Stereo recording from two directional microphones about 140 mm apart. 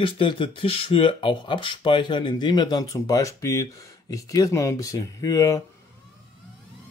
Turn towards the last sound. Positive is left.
turn(degrees=25)  # may be behind; listen again after turning